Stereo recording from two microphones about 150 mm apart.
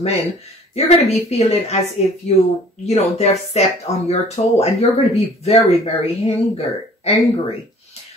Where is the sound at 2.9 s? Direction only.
45° left (ahead or behind).